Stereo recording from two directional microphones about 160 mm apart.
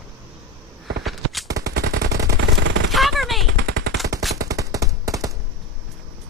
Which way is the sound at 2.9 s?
Centre (ahead or behind).